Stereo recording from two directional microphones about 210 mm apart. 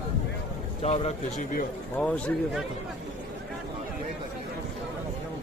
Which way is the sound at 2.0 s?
Centre (ahead or behind).